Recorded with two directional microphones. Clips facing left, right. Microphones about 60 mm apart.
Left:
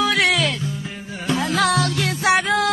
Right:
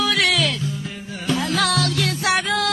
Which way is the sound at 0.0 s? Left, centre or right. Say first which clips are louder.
Left 1 dB; left.